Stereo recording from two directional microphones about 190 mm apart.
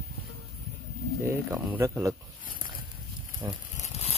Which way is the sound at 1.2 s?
15° right (ahead or behind).